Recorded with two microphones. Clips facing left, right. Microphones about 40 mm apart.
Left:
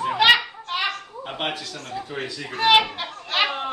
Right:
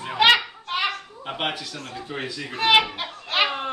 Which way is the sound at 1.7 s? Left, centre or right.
Right.